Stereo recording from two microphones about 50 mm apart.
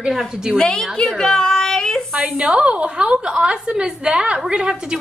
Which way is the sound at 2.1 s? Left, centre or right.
Centre.